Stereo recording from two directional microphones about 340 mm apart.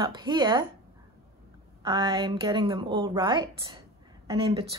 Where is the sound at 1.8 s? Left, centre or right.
Centre.